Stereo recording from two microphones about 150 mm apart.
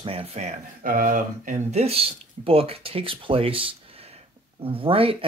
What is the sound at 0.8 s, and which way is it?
Speech, 65° right (ahead or behind).